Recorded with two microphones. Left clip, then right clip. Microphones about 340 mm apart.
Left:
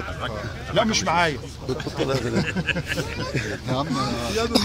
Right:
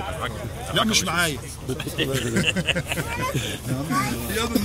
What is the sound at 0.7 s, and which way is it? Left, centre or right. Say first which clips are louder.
Speech: left 1 dB; centre.